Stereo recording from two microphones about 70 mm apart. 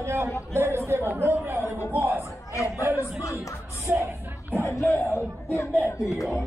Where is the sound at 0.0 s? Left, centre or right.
Right.